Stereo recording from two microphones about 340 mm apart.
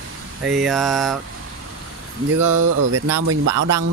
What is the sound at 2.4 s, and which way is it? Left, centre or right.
Speech, right.